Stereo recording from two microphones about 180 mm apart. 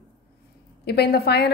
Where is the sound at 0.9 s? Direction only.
60° left (ahead or behind).